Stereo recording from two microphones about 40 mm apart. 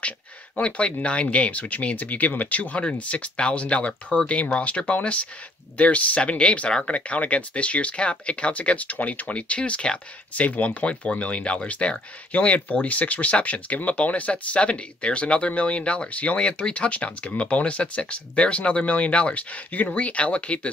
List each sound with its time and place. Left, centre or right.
0.6 s speech: left
9.3 s speech: left
10.3 s speech: left